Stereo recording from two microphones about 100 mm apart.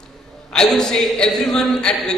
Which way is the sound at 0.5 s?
5° left (ahead or behind).